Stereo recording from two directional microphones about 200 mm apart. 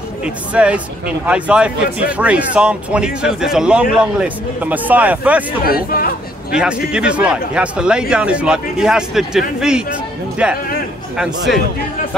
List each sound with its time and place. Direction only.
0.2 s speech: 5° right (ahead or behind)
5.6 s speech: 50° left (ahead or behind)
6.5 s speech: 5° right (ahead or behind)